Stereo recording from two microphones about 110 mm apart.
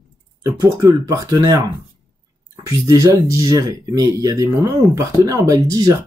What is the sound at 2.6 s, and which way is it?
Speech, 30° right (ahead or behind).